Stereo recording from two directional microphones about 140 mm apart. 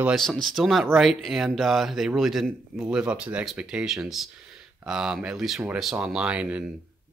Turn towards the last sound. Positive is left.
turn(degrees=-10)  # may be behind; listen again after turning